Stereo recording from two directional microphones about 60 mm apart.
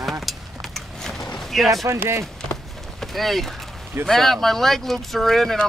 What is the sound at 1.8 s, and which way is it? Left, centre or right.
Speech, right.